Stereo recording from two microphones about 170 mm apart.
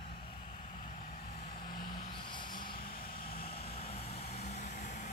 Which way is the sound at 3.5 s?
35° left (ahead or behind).